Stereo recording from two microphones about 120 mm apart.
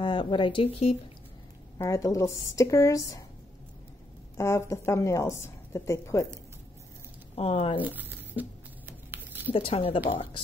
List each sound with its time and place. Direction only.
0.0 s speech: 45° left (ahead or behind)
1.8 s a woman's voice: 25° left (ahead or behind)
4.4 s a woman's voice: 25° left (ahead or behind)
7.3 s speech: 55° left (ahead or behind)
7.8 s a sound: 15° right (ahead or behind)
9.5 s speech: 50° left (ahead or behind)